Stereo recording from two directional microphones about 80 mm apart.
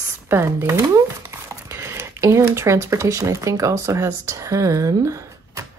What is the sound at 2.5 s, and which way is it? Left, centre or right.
Speech, right.